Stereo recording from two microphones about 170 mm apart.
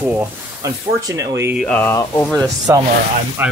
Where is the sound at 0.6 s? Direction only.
20° right (ahead or behind).